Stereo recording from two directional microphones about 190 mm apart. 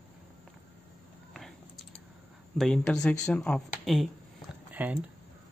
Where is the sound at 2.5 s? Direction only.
Centre (ahead or behind).